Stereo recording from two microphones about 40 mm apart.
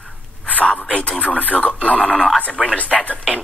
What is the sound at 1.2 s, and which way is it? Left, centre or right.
Radio, left.